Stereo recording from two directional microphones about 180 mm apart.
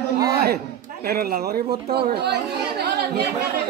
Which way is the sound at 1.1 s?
60° right (ahead or behind).